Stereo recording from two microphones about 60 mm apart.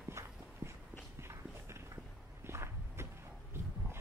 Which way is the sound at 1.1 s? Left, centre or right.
Right.